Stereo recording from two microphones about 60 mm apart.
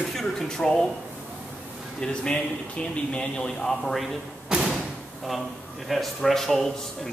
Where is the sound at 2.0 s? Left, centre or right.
Centre.